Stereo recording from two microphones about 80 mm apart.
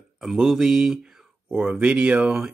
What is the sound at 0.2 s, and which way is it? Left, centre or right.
Speech, centre.